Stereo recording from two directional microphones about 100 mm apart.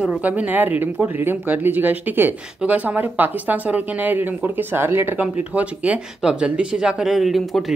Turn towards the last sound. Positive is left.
turn(degrees=0)  # may be behind; listen again after turning